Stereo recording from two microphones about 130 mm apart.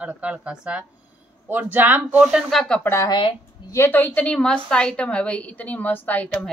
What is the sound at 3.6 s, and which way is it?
A woman's voice, 20° left (ahead or behind).